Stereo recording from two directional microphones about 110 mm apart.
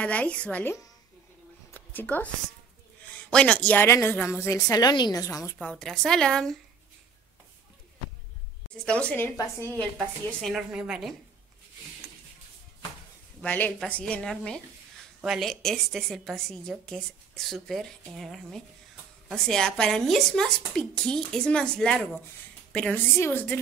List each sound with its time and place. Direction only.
0.0 s a woman's voice: 10° left (ahead or behind)
1.7 s a sound: 15° left (ahead or behind)
3.1 s a woman's voice: 10° left (ahead or behind); by 5.6 s 30° left (ahead or behind)
5.6 s a woman's voice: 10° left (ahead or behind)
8.7 s a woman's voice: 10° left (ahead or behind)
9.9 s a woman's voice: centre (ahead or behind)
13.4 s a woman's voice: 15° left (ahead or behind)
23.1 s a woman's voice: 20° left (ahead or behind)